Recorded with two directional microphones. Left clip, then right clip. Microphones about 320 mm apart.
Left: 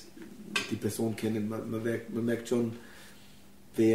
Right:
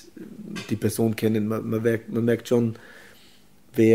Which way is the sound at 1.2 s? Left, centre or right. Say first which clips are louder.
Right 9 dB; right.